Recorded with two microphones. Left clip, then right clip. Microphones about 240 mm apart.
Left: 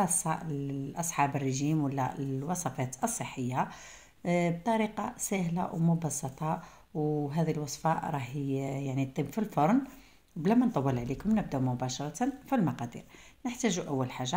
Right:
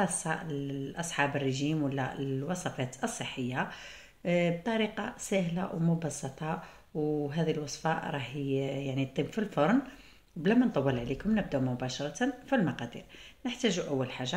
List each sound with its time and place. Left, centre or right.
0.0 s speech: left